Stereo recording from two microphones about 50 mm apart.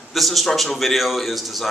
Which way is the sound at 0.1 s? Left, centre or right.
Centre.